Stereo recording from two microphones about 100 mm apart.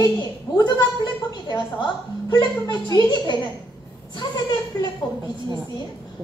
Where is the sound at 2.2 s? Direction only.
40° left (ahead or behind).